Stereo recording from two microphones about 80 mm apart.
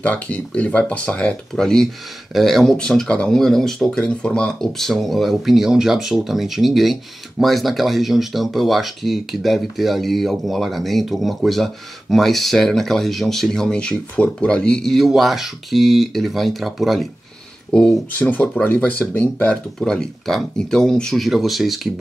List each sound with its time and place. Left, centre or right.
0.0 s speech: centre
17.6 s speech: centre
19.5 s speech: centre